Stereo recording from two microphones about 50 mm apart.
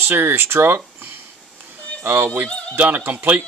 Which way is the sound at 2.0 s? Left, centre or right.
Right.